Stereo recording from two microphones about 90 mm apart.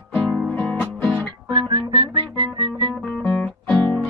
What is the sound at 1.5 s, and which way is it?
Music, 70° right (ahead or behind).